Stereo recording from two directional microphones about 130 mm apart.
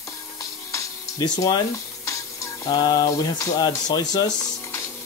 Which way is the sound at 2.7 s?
30° left (ahead or behind).